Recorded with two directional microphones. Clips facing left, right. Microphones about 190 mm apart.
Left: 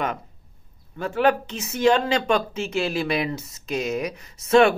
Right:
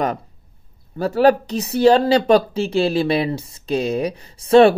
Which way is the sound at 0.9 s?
35° right (ahead or behind).